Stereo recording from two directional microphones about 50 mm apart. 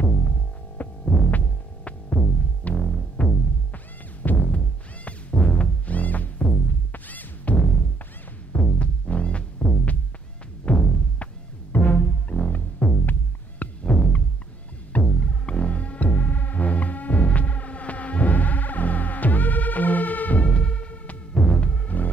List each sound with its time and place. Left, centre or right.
0.0 s throbbing: left
1.9 s music: left
11.7 s music: left